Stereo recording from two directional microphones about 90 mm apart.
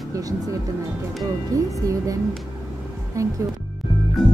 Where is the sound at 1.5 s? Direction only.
40° right (ahead or behind).